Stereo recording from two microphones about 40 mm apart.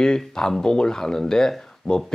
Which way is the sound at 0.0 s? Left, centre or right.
Centre.